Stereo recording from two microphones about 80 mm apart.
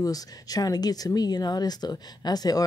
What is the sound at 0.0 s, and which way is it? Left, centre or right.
Speech, left.